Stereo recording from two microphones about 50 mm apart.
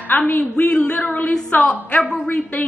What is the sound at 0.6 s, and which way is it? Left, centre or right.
A woman's voice, left.